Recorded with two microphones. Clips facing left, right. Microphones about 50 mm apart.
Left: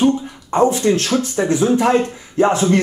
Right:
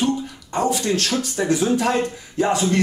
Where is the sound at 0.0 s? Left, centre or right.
Left.